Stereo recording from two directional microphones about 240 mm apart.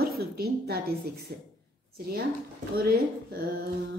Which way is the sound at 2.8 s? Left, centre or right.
Right.